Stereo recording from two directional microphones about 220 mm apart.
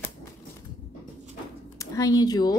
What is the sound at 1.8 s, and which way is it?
Speech, 15° left (ahead or behind).